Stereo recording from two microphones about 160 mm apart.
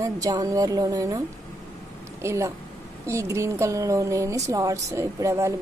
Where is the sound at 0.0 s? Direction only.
20° right (ahead or behind).